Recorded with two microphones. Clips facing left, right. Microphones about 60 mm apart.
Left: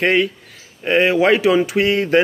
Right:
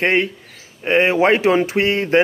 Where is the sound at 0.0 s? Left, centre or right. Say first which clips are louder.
Left 1 dB; right.